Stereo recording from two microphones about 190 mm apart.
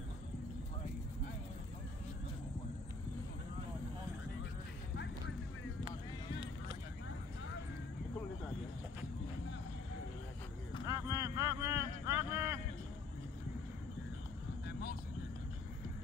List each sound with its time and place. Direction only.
10.9 s vehicle: 15° right (ahead or behind)
14.7 s vehicle: 55° left (ahead or behind)